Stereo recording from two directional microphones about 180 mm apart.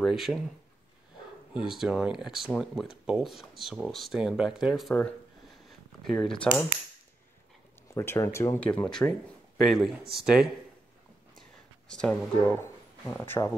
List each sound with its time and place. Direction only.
0.0 s speech: centre (ahead or behind)
1.5 s speech: 5° right (ahead or behind)
5.7 s a sound: centre (ahead or behind)
7.9 s speech: 15° left (ahead or behind)
8.6 s speech: 5° left (ahead or behind)
11.9 s speech: 5° left (ahead or behind)